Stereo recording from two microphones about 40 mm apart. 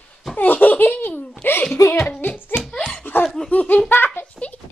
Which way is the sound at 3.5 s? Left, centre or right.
Left.